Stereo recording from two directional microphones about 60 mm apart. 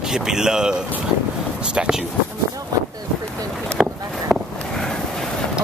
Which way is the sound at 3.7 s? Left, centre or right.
Centre.